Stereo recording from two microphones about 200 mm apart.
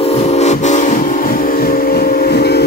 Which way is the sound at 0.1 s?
30° left (ahead or behind).